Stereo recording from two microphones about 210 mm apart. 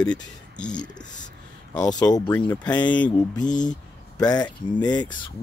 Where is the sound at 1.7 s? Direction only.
20° left (ahead or behind).